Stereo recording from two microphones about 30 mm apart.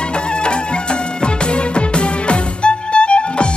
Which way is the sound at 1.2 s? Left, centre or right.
Left.